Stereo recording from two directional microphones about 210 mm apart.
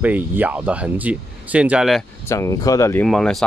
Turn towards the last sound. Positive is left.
turn(degrees=0)  # may be behind; listen again after turning